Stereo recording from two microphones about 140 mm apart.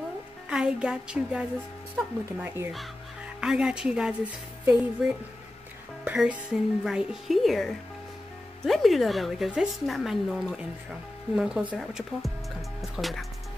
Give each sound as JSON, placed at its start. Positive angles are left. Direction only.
{"t": 0.5, "sound": "a woman's voice", "side_deg": -5}
{"t": 3.3, "sound": "a woman's voice", "side_deg": -5}
{"t": 6.0, "sound": "a woman's voice", "side_deg": -10}